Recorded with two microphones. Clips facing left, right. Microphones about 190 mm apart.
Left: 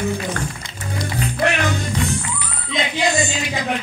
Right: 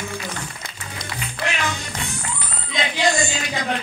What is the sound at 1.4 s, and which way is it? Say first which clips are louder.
Music: left 7 dB; 55° left (ahead or behind).